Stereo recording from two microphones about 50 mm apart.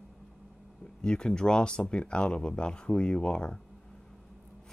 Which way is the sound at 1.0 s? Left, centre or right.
Centre.